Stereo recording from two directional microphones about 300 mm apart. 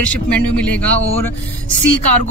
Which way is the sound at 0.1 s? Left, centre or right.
Centre.